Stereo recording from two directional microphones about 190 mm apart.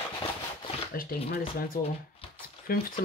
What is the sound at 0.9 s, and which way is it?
Speech, 50° left (ahead or behind).